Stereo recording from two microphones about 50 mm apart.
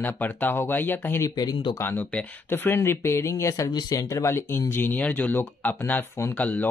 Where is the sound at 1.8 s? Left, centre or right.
Left.